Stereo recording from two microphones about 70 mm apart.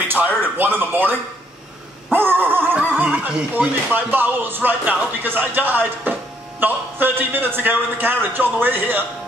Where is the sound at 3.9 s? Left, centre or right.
Right.